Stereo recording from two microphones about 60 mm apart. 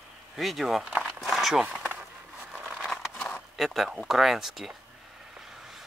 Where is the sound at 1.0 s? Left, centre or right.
Centre.